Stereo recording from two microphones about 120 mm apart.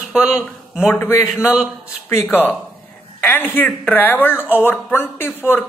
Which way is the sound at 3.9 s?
15° left (ahead or behind).